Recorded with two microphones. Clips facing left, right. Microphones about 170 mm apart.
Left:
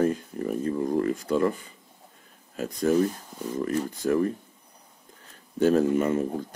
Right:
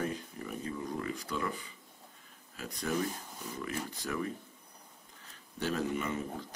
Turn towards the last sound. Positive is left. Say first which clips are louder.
# left 11 dB
turn(degrees=50)  # may be behind; listen again after turning